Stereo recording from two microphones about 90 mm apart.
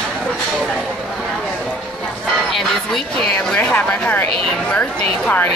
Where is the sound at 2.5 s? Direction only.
5° left (ahead or behind).